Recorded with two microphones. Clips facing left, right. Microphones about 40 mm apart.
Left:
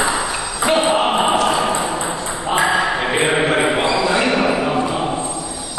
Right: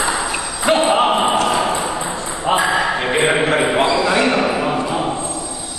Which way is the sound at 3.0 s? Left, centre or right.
Centre.